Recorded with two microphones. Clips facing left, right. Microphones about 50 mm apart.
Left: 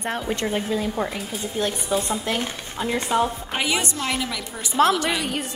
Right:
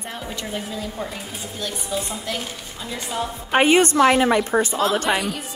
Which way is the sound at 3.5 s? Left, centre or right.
Right.